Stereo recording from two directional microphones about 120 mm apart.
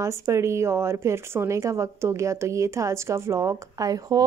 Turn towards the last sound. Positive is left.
turn(degrees=-30)  # may be behind; listen again after turning